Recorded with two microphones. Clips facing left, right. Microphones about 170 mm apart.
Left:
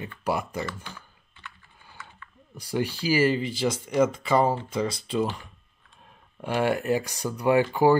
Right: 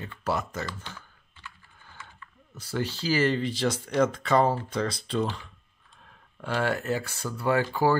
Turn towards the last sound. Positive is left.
turn(degrees=15)  # may be behind; listen again after turning